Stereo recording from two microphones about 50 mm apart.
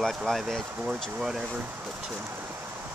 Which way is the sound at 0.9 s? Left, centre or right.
Centre.